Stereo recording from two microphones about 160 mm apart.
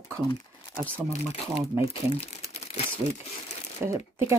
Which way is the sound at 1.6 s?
20° right (ahead or behind).